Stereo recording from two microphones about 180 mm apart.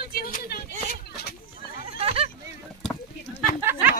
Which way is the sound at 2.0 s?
30° right (ahead or behind).